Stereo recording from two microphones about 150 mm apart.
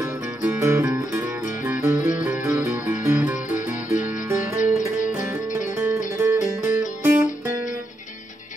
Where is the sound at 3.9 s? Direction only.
55° left (ahead or behind).